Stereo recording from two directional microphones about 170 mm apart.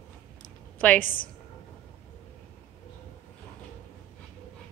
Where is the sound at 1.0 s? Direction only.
55° left (ahead or behind).